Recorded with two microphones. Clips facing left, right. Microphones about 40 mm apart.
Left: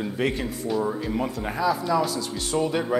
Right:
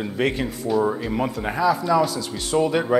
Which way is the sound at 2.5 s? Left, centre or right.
Centre.